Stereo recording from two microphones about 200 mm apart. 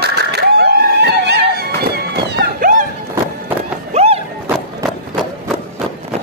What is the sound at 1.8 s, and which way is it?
Run, 55° right (ahead or behind).